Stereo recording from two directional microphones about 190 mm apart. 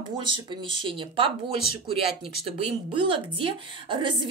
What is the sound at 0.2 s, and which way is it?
Speech, 25° right (ahead or behind).